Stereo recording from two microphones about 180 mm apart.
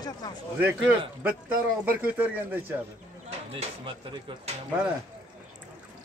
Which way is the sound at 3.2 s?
30° right (ahead or behind).